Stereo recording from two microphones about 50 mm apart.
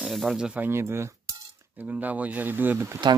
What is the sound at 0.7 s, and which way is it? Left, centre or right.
Speech, right.